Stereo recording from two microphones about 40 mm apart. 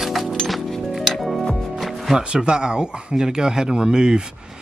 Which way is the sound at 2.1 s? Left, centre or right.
Right.